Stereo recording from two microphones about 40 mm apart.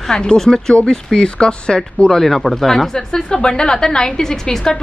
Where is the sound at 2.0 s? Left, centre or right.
Centre.